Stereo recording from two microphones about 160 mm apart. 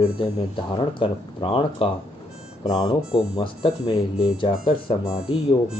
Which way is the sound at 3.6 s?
40° left (ahead or behind).